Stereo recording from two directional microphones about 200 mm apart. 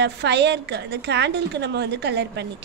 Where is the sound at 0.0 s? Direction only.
60° right (ahead or behind).